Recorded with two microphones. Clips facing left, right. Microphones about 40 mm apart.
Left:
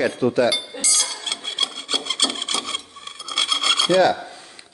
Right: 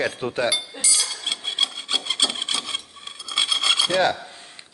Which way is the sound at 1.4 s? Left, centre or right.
Centre.